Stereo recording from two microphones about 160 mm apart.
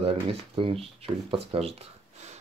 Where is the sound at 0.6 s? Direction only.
35° right (ahead or behind).